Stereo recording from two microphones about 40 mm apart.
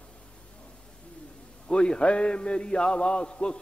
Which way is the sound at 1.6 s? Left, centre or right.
Left.